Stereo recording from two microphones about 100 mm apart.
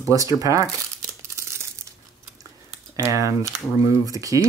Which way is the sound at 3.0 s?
30° right (ahead or behind).